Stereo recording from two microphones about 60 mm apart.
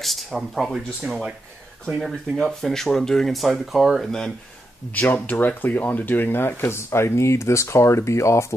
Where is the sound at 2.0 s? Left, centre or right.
Centre.